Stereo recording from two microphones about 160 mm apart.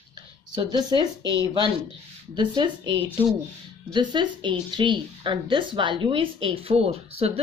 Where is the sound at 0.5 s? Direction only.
25° right (ahead or behind).